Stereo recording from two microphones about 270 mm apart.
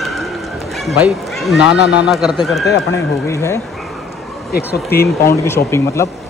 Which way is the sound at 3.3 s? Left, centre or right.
Centre.